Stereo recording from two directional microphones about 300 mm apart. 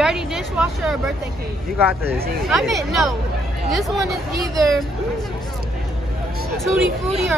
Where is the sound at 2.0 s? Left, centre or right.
Centre.